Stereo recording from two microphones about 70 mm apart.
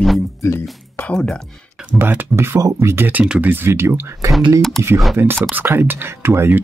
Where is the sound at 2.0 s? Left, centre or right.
Right.